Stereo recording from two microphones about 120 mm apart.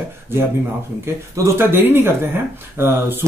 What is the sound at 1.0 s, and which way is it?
Speech, 20° right (ahead or behind).